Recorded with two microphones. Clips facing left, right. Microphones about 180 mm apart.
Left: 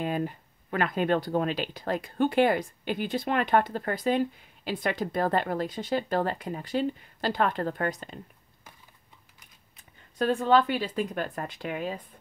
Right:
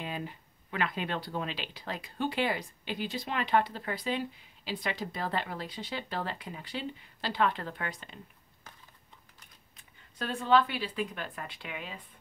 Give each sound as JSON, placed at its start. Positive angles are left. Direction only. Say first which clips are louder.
{"t": 0.0, "sound": "speech", "louder": "left 9 dB", "side_deg": 50}
{"t": 10.1, "sound": "speech", "louder": "left 4 dB", "side_deg": 40}